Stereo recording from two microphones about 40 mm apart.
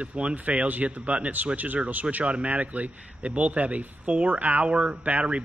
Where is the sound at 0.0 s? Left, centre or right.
Right.